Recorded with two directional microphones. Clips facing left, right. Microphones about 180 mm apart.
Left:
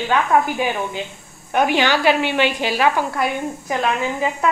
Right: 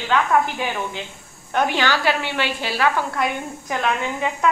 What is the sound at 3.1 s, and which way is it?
A woman's voice, centre (ahead or behind).